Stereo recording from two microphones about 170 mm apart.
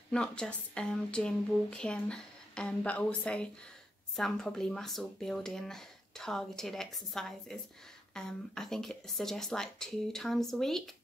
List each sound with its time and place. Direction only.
0.1 s speech: 5° left (ahead or behind)